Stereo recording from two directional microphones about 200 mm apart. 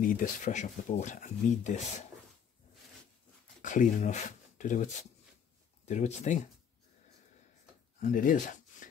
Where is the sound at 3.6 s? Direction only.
40° left (ahead or behind).